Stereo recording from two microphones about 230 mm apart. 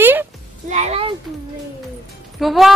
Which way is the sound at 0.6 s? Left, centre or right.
Right.